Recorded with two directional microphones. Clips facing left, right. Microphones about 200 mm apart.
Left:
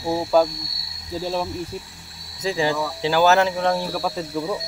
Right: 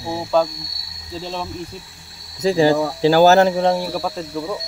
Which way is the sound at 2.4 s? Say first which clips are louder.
Right 7 dB; 40° right (ahead or behind).